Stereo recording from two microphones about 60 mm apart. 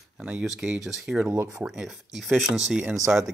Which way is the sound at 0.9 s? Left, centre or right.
Centre.